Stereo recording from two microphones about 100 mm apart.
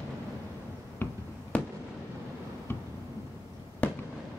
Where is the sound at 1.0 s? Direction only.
20° left (ahead or behind).